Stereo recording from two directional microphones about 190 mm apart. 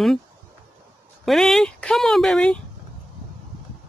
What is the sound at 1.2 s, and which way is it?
Speech, centre (ahead or behind).